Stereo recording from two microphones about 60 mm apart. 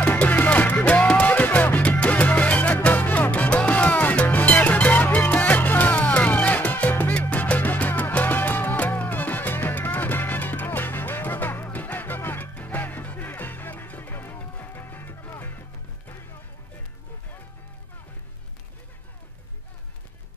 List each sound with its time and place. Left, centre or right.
0.0 s music: left